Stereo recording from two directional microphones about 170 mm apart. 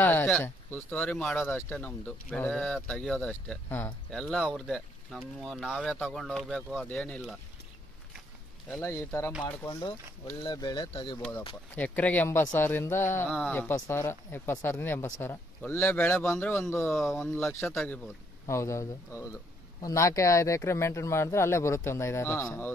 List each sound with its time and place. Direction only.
0.0 s speech: 10° left (ahead or behind)
8.6 s speech: 15° left (ahead or behind); by 11.1 s 30° left (ahead or behind)
11.7 s speech: 10° left (ahead or behind)
17.3 s speech: 15° left (ahead or behind)